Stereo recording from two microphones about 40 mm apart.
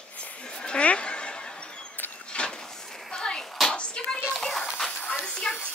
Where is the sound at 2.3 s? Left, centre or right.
Left.